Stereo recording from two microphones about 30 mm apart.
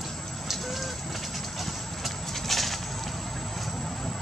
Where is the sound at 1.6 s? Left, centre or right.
Centre.